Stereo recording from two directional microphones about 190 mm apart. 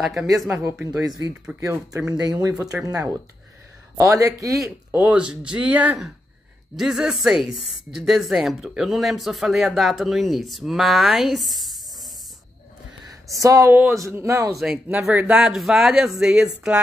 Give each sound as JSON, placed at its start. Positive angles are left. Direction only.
{"t": 0.0, "sound": "speech", "side_deg": -5}
{"t": 0.5, "sound": "speech", "side_deg": -15}
{"t": 13.0, "sound": "speech", "side_deg": -15}
{"t": 14.5, "sound": "speech", "side_deg": 0}